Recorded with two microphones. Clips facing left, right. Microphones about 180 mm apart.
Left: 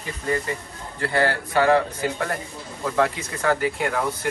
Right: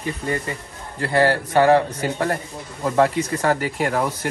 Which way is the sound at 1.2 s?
35° right (ahead or behind).